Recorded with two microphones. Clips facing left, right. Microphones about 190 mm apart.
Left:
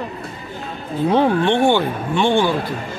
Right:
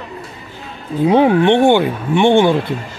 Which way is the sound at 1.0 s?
15° right (ahead or behind).